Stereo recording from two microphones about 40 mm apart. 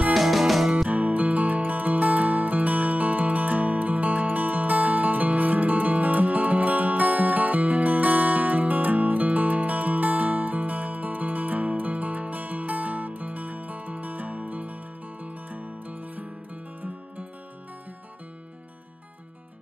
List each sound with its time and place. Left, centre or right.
0.1 s music: centre
0.8 s music: right